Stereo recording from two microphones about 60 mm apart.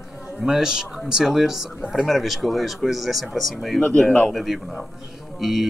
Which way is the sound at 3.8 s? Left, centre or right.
Centre.